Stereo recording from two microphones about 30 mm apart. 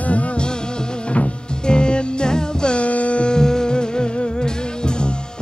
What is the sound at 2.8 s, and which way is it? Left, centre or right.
Music, left.